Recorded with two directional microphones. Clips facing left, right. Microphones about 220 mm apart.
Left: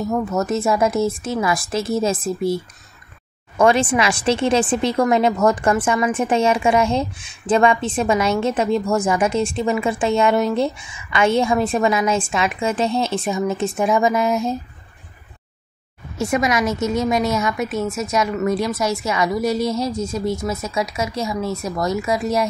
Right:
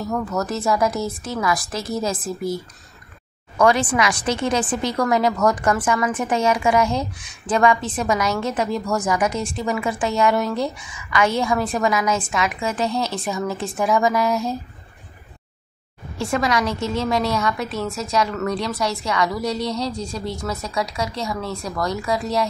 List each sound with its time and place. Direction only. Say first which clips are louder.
0.1 s a woman's voice: left 3 dB; 20° left (ahead or behind)
16.2 s a woman's voice: left 2 dB; 20° left (ahead or behind)